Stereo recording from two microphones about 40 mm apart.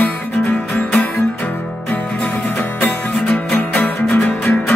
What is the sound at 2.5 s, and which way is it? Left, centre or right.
Music, left.